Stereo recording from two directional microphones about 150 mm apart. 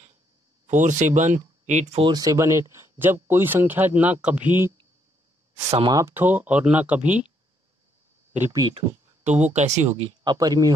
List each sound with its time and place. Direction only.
0.7 s speech: 55° right (ahead or behind)
2.0 s speech: 25° right (ahead or behind)
5.8 s speech: 30° right (ahead or behind)
6.0 s speech: 10° right (ahead or behind)
8.4 s speech: 20° right (ahead or behind)
8.7 s speech: 50° right (ahead or behind)
9.9 s speech: 40° right (ahead or behind)
10.3 s speech: 25° right (ahead or behind)